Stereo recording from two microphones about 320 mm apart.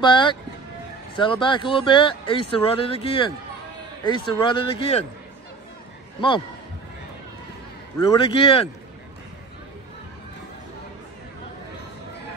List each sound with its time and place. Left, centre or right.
0.0 s speech: centre
8.0 s speech: centre